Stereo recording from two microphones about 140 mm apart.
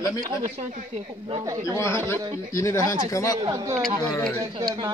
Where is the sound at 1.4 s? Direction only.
30° right (ahead or behind).